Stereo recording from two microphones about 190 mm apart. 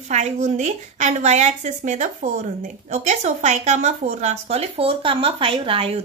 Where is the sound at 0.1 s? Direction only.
35° right (ahead or behind).